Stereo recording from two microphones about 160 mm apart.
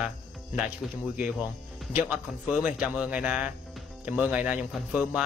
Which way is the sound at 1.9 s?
10° right (ahead or behind).